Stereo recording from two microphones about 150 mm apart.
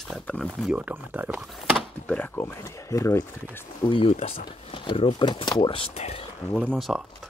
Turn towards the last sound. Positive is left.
turn(degrees=0)  # may be behind; listen again after turning